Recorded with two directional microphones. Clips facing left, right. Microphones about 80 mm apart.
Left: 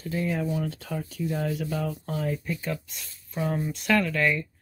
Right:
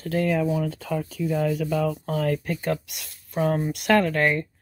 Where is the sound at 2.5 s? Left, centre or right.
Right.